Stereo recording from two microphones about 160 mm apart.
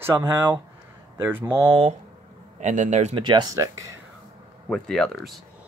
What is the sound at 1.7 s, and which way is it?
Speech, 35° right (ahead or behind).